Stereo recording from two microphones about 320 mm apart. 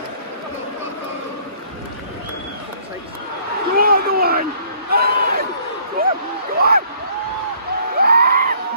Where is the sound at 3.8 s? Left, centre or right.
Right.